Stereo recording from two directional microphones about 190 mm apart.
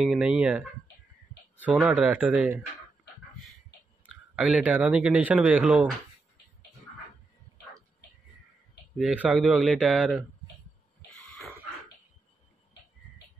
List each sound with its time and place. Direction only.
0.0 s speech: 5° right (ahead or behind)
4.0 s speech: 5° right (ahead or behind)
8.9 s speech: 5° right (ahead or behind)
11.0 s cough: 60° left (ahead or behind)